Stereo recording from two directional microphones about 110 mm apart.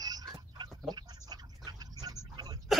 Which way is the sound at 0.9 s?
40° right (ahead or behind).